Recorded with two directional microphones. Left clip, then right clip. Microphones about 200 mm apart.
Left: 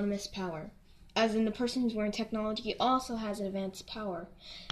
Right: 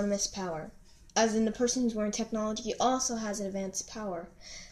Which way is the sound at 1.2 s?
30° left (ahead or behind).